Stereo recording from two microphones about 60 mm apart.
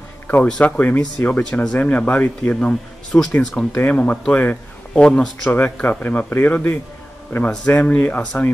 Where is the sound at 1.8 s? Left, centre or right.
Left; by 3.2 s centre.